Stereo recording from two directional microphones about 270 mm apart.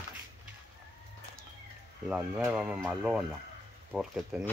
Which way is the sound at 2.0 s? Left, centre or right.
Centre.